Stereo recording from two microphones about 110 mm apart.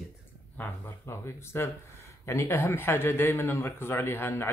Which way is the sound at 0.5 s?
25° left (ahead or behind).